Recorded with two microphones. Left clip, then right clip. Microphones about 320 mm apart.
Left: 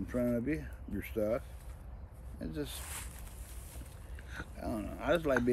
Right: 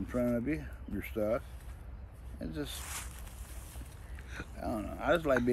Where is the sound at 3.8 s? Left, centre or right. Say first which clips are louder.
Right 1 dB; centre.